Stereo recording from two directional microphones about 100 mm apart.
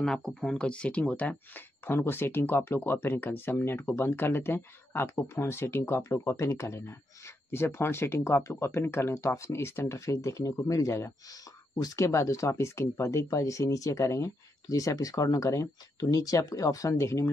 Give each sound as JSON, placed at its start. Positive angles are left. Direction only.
{"t": 0.0, "sound": "speech", "side_deg": 5}